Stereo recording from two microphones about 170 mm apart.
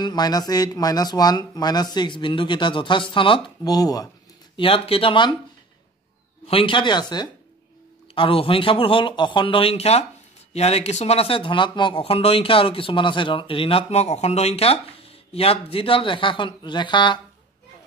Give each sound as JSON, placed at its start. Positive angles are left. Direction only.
{"t": 0.0, "sound": "speech", "side_deg": 25}
{"t": 4.6, "sound": "speech", "side_deg": 35}
{"t": 6.4, "sound": "speech", "side_deg": 30}